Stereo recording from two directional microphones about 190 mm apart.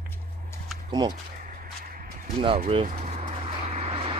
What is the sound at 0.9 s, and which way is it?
Speech, 25° right (ahead or behind).